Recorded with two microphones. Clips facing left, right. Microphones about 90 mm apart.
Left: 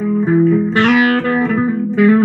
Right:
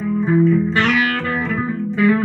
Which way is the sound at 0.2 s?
45° left (ahead or behind).